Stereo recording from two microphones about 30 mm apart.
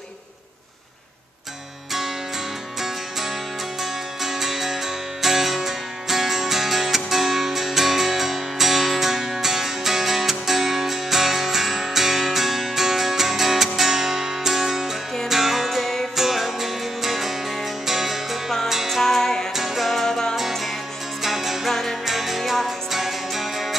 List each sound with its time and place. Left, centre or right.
1.9 s music: centre
18.9 s music: centre
19.5 s music: centre
20.1 s music: centre
20.3 s music: centre
21.6 s music: centre
22.0 s music: centre